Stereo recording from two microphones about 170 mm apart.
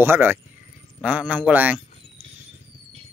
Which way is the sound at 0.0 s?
10° right (ahead or behind).